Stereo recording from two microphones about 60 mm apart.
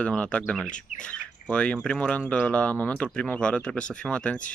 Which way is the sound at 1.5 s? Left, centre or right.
Centre.